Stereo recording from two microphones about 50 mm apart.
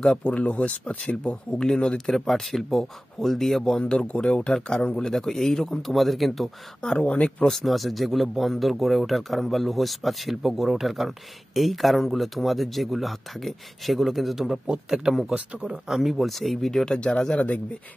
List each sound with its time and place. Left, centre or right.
0.2 s speech: left; by 3.7 s centre
3.7 s speech: centre
6.8 s speech: centre
7.4 s speech: centre
14.7 s a man's voice: centre
15.9 s speech: centre
16.8 s speech: centre